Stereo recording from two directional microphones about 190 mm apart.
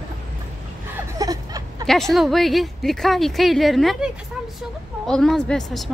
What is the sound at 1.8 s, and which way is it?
Speech, centre (ahead or behind).